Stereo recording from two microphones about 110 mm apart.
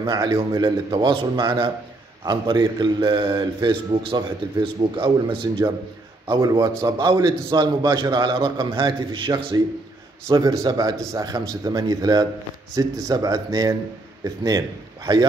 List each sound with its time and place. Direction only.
0.0 s a man's voice: 40° right (ahead or behind)
6.4 s a man's voice: 35° right (ahead or behind)